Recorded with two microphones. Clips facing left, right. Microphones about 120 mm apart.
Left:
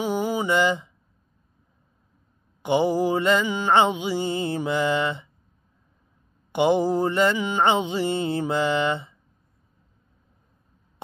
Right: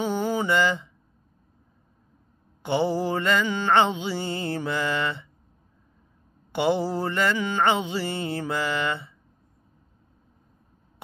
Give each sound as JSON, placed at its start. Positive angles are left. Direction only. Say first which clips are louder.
{"t": 0.0, "sound": "mantra", "louder": "left 1 dB", "side_deg": 10}
{"t": 2.6, "sound": "mantra", "louder": "left 3 dB", "side_deg": 15}
{"t": 6.5, "sound": "mantra", "louder": "left 4 dB", "side_deg": 15}